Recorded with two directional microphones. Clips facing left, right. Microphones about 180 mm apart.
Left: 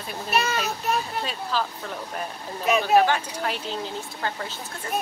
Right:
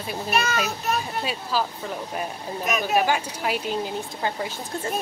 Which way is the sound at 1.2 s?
10° right (ahead or behind).